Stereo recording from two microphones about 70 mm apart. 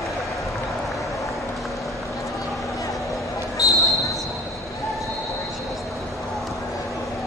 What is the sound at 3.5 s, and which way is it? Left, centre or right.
Basketball bounce, left.